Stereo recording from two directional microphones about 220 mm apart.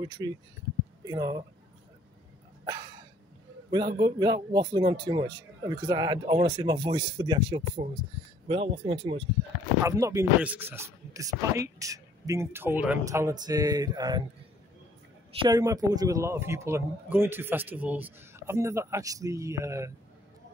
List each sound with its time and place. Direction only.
0.0 s a man's voice: 20° right (ahead or behind)
2.6 s a sound: 15° right (ahead or behind)
3.7 s a man's voice: 20° right (ahead or behind)
15.3 s a man's voice: 20° right (ahead or behind)